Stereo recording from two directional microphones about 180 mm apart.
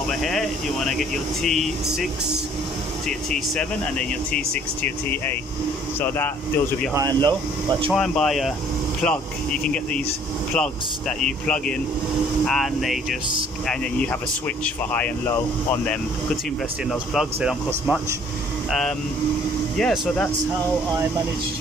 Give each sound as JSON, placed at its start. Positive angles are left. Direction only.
{"t": 0.2, "sound": "speech", "side_deg": 0}
{"t": 4.8, "sound": "speech", "side_deg": 10}
{"t": 6.9, "sound": "speech", "side_deg": -20}
{"t": 7.9, "sound": "speech", "side_deg": 5}
{"t": 14.6, "sound": "speech", "side_deg": 10}
{"t": 17.1, "sound": "speech", "side_deg": 0}